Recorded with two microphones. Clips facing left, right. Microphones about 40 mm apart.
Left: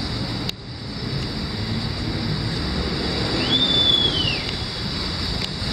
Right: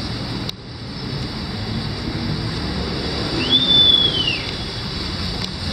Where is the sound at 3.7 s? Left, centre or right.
Right.